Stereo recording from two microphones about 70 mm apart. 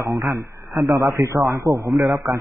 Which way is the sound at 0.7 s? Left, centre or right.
Right.